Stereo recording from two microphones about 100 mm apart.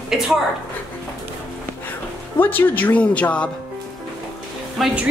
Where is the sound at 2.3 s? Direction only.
20° left (ahead or behind).